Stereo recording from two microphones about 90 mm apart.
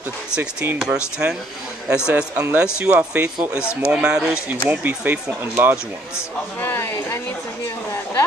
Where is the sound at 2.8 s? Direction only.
15° right (ahead or behind).